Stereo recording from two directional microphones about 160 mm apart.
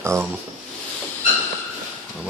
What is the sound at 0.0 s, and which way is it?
Speech, 15° right (ahead or behind).